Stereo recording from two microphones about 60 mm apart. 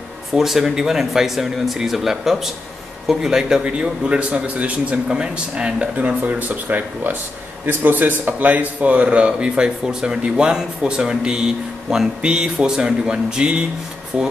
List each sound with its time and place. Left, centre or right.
0.4 s a man's voice: centre